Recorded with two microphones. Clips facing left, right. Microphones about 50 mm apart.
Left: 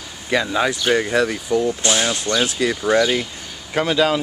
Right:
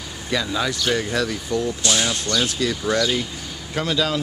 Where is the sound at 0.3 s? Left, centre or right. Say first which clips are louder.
Left 4 dB; left.